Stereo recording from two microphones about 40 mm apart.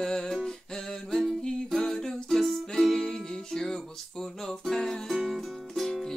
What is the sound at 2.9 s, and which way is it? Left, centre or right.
Music, centre.